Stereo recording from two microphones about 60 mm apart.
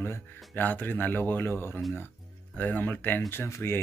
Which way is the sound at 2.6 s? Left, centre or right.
Left.